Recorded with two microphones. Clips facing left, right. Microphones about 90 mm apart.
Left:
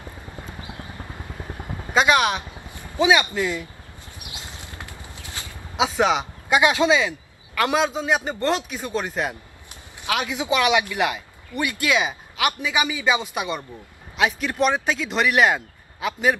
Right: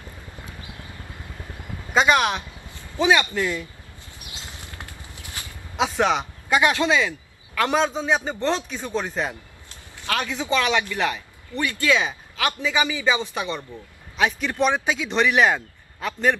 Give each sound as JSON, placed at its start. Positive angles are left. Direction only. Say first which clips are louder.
{"t": 0.5, "sound": "vehicle", "louder": "left 4 dB", "side_deg": 20}
{"t": 2.0, "sound": "speech", "louder": "even", "side_deg": 5}
{"t": 2.6, "sound": "speech", "louder": "left 1 dB", "side_deg": 15}
{"t": 4.3, "sound": "vehicle", "louder": "left 1 dB", "side_deg": 20}
{"t": 5.4, "sound": "a sound", "louder": "left 1 dB", "side_deg": 20}
{"t": 5.8, "sound": "speech", "louder": "left 1 dB", "side_deg": 5}
{"t": 7.5, "sound": "a man's voice", "louder": "even", "side_deg": 5}
{"t": 14.1, "sound": "speech", "louder": "even", "side_deg": 5}